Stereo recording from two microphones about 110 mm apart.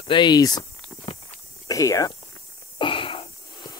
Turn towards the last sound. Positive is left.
turn(degrees=50)  # may be behind; listen again after turning